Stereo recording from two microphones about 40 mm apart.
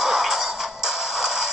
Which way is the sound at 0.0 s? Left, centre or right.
Centre.